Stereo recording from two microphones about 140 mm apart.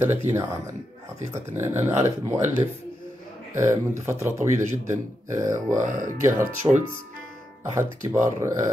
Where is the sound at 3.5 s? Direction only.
20° right (ahead or behind).